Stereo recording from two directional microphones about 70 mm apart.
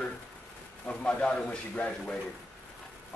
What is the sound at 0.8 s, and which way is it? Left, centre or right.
A man's voice, centre.